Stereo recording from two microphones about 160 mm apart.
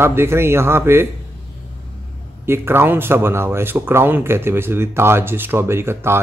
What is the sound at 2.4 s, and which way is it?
Speech, 15° right (ahead or behind).